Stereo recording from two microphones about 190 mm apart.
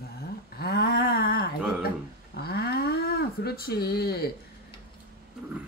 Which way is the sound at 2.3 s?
55° left (ahead or behind).